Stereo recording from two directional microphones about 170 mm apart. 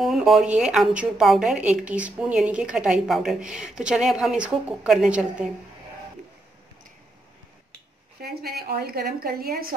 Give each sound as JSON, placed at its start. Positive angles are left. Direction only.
{"t": 0.0, "sound": "a woman's voice", "side_deg": 0}
{"t": 8.2, "sound": "a woman's voice", "side_deg": -65}